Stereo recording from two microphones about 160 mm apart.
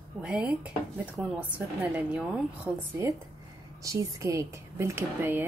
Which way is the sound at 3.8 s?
20° right (ahead or behind).